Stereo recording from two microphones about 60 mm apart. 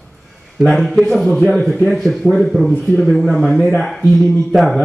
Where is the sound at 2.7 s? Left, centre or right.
Left.